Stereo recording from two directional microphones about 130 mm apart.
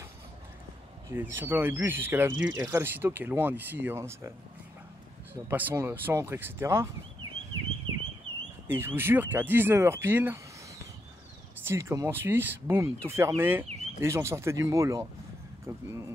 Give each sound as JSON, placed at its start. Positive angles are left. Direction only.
{"t": 1.1, "sound": "speech", "side_deg": -15}
{"t": 5.5, "sound": "speech", "side_deg": -15}
{"t": 8.6, "sound": "speech", "side_deg": -15}
{"t": 11.6, "sound": "speech", "side_deg": -20}